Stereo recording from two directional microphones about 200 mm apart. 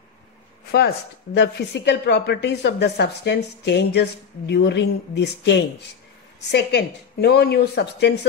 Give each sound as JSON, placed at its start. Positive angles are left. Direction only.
{"t": 0.7, "sound": "speech", "side_deg": 55}